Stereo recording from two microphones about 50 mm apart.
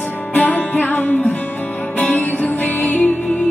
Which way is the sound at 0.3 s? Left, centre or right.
Left.